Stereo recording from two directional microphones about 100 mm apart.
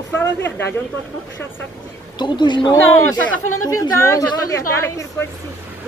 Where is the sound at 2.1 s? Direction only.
50° left (ahead or behind).